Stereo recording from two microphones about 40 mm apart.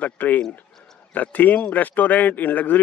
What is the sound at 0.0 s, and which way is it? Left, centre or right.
Speech, left.